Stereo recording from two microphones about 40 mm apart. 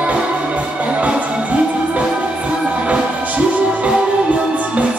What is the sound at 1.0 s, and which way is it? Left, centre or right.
Music, right.